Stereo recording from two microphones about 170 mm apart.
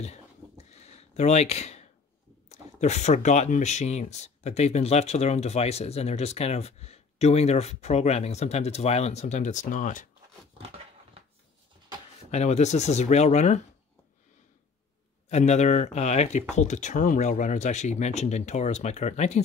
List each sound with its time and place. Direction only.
0.0 s a sound: 40° left (ahead or behind)
2.5 s speech: 40° left (ahead or behind)
12.3 s speech: 40° left (ahead or behind)
15.2 s speech: 40° left (ahead or behind)